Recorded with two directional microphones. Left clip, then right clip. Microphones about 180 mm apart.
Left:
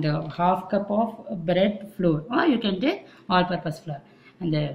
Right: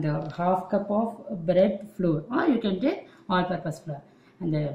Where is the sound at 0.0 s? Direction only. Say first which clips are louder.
Left 4 dB; 15° right (ahead or behind).